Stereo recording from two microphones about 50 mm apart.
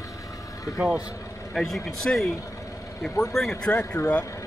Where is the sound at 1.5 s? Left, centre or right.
Centre.